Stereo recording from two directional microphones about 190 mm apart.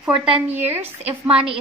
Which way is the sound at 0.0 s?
10° right (ahead or behind).